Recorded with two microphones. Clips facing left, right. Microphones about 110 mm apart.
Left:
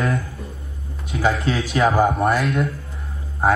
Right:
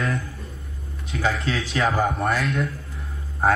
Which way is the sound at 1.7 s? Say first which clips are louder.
Left 5 dB; 25° left (ahead or behind).